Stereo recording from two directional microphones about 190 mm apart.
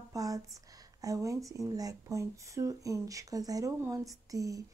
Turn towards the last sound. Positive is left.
turn(degrees=-15)  # may be behind; listen again after turning